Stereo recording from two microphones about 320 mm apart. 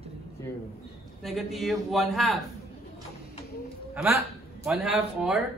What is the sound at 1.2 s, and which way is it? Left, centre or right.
Speech, centre.